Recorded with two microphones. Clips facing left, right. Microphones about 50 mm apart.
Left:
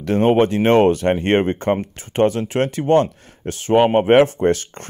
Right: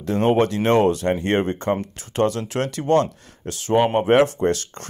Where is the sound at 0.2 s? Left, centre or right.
Left.